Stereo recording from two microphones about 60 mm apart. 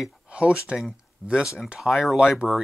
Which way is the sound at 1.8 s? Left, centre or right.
Centre.